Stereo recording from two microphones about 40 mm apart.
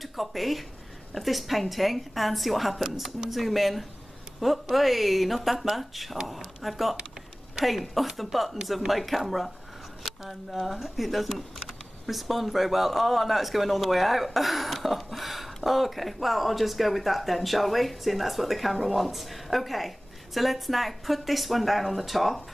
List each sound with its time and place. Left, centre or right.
0.0 s a man's voice: centre